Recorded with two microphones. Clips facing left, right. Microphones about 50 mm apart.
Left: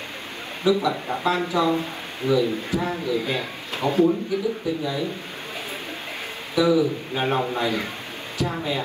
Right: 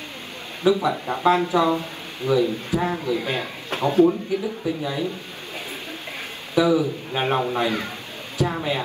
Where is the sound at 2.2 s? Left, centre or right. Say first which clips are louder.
Right 1 dB; left.